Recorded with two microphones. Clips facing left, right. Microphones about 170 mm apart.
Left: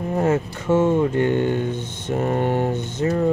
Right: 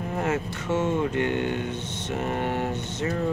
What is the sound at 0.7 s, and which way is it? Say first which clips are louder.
Speech: left 6 dB; 40° left (ahead or behind).